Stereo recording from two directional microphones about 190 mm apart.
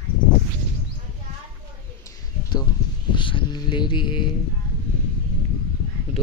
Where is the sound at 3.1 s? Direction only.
25° left (ahead or behind).